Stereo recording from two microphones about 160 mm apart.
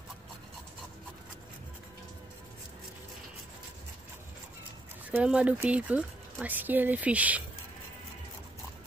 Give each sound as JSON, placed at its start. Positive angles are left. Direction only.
{"t": 5.1, "sound": "speech", "side_deg": -5}